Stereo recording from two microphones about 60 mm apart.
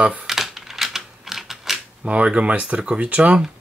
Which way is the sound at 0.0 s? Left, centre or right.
Right.